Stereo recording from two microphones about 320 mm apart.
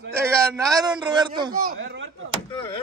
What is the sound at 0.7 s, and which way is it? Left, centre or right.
Speech, centre.